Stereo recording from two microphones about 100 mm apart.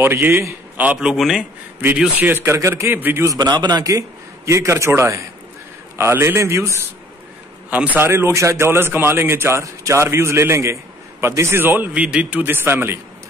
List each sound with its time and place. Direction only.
0.0 s a man's voice: 20° right (ahead or behind)
0.7 s a man's voice: 10° right (ahead or behind)
2.1 s a man's voice: 20° right (ahead or behind)
3.3 s a man's voice: 45° right (ahead or behind); by 6.9 s 30° right (ahead or behind)
7.7 s a man's voice: 15° right (ahead or behind)